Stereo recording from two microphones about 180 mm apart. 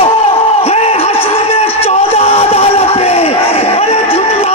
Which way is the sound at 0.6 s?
35° left (ahead or behind).